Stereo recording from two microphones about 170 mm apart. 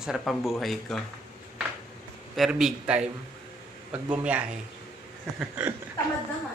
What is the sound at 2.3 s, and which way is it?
Speech, centre (ahead or behind).